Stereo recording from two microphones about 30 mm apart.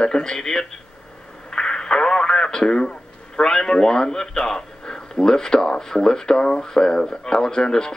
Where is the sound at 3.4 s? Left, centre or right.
Centre.